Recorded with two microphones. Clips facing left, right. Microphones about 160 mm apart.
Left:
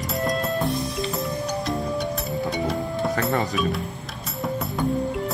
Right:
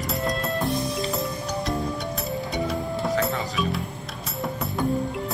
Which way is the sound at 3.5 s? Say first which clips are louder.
Left 2 dB; centre (ahead or behind).